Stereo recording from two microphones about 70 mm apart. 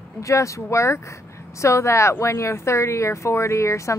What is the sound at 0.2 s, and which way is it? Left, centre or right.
Speech, left.